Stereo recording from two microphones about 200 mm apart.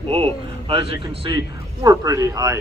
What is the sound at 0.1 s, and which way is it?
Speech, 25° right (ahead or behind).